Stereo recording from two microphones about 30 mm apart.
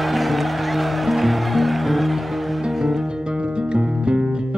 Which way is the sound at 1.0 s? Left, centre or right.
Centre.